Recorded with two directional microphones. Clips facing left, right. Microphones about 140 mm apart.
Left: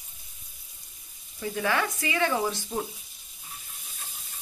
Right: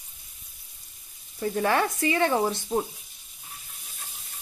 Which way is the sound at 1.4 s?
40° right (ahead or behind).